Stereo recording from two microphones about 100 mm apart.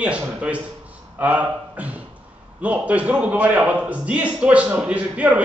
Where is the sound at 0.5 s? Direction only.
15° right (ahead or behind).